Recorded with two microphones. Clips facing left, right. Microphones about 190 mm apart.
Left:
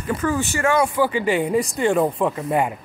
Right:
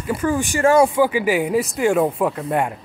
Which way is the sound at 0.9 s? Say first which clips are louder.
Right 2 dB; 10° right (ahead or behind).